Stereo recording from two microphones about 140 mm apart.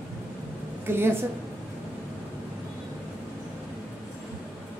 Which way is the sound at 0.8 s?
15° right (ahead or behind).